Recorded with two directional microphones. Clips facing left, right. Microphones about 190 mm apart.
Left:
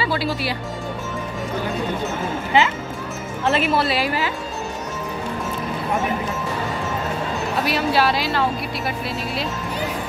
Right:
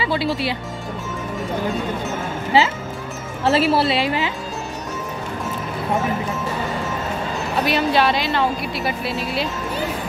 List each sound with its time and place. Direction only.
0.0 s speech: 20° right (ahead or behind)
2.5 s a woman's voice: 30° right (ahead or behind)
7.5 s a woman's voice: centre (ahead or behind)